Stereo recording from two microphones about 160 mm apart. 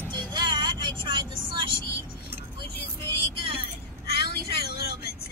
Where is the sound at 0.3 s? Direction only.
25° right (ahead or behind).